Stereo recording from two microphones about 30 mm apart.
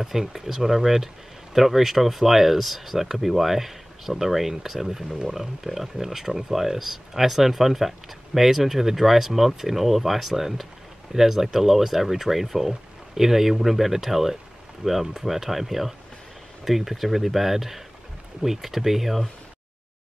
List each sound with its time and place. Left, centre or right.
0.0 s speech: centre